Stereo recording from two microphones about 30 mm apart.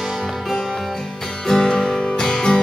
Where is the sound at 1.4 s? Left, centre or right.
Centre.